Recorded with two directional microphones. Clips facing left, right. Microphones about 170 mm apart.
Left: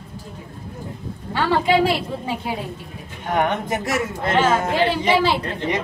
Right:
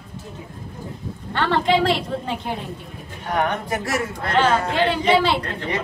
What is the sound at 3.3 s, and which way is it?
A man's voice, 20° left (ahead or behind).